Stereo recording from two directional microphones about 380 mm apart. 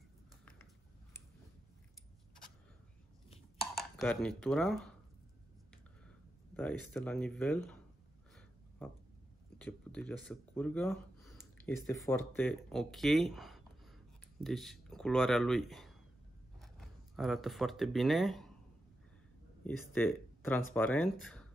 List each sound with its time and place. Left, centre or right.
3.7 s speech: centre
6.5 s speech: centre
8.4 s a sound: centre
9.6 s speech: centre
19.6 s speech: centre